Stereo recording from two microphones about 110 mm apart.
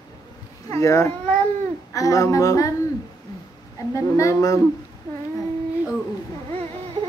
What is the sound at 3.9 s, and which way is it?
Speech, 30° left (ahead or behind).